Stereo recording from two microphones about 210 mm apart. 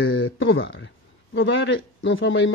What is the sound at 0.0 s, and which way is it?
Speech, 60° left (ahead or behind).